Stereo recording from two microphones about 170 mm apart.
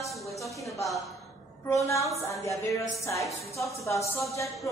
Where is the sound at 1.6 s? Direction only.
20° left (ahead or behind).